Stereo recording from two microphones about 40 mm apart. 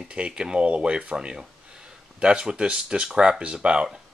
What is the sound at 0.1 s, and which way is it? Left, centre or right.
Speech, right.